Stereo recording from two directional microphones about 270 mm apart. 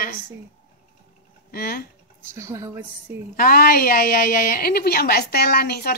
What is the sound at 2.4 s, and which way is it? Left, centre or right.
Speech, centre.